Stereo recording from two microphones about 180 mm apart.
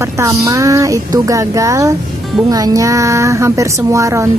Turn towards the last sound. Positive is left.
turn(degrees=-15)  # may be behind; listen again after turning